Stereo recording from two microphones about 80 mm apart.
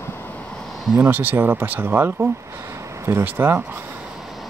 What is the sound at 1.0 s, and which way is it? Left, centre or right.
Speech, right.